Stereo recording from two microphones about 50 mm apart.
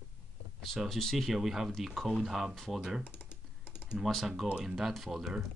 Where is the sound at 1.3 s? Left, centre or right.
Centre.